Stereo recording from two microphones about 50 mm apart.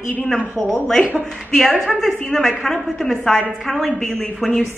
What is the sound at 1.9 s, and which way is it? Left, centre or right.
A woman's voice, centre.